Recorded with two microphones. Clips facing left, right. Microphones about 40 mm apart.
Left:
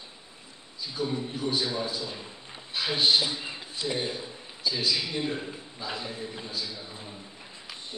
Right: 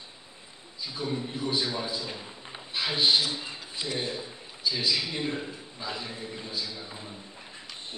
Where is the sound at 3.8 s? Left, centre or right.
Centre.